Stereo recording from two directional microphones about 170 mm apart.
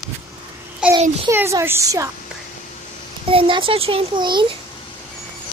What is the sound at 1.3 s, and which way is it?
Child singing, 15° right (ahead or behind).